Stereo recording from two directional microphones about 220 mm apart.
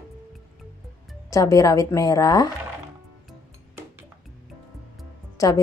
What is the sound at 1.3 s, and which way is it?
A woman's voice, 15° left (ahead or behind).